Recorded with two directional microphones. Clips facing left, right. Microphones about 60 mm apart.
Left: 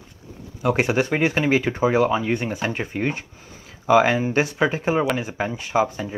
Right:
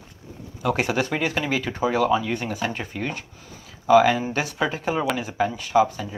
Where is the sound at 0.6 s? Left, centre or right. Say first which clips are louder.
Left 3 dB; centre.